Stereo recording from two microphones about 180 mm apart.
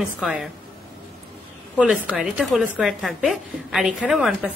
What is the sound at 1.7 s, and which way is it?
A woman's voice, 5° right (ahead or behind).